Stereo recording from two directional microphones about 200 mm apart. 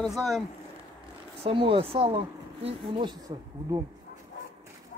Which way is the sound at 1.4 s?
25° right (ahead or behind).